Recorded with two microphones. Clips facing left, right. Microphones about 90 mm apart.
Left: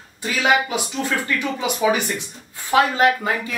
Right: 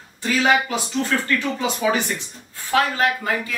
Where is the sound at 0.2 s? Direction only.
15° left (ahead or behind).